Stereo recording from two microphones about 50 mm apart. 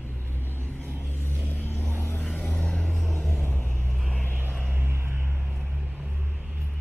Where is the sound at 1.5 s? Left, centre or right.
Left.